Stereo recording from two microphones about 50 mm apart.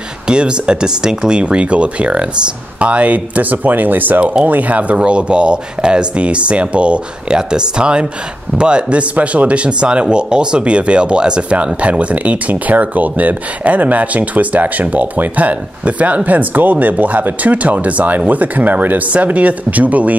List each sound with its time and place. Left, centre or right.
0.3 s speech: centre